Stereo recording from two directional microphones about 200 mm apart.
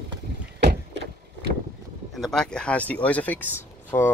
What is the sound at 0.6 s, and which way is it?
Vehicle, 55° right (ahead or behind).